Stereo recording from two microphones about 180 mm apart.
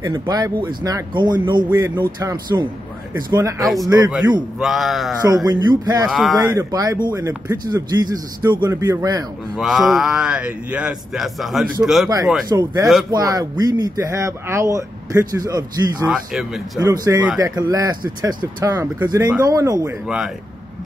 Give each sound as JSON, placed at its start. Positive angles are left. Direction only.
{"t": 0.0, "sound": "speech", "side_deg": -20}
{"t": 3.6, "sound": "a man's voice", "side_deg": 0}
{"t": 5.2, "sound": "speech", "side_deg": -20}
{"t": 6.0, "sound": "a man's voice", "side_deg": 0}
{"t": 6.5, "sound": "speech", "side_deg": -20}
{"t": 9.6, "sound": "a man's voice", "side_deg": 0}
{"t": 12.4, "sound": "speech", "side_deg": -20}
{"t": 16.1, "sound": "a man's voice", "side_deg": 0}
{"t": 16.7, "sound": "speech", "side_deg": -20}